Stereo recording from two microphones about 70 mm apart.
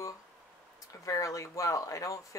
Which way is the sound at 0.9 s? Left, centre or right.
Left.